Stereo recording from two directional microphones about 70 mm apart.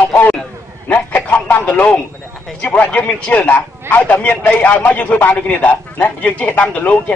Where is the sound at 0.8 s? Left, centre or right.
Left.